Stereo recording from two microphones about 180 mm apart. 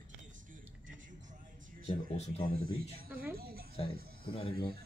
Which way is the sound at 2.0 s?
55° right (ahead or behind).